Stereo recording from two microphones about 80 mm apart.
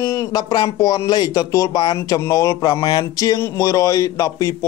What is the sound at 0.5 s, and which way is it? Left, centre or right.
Speech, left.